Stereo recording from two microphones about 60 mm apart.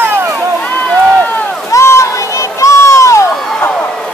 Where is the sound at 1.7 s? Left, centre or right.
Left.